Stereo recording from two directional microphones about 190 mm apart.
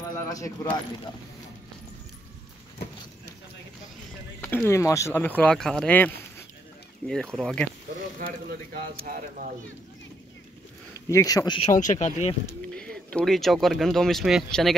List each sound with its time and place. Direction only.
0.3 s speech: 20° left (ahead or behind)
4.4 s speech: 10° left (ahead or behind)
8.2 s speech: 50° right (ahead or behind)
10.9 s speech: 15° left (ahead or behind)
11.7 s speech: 40° left (ahead or behind)
13.1 s speech: centre (ahead or behind)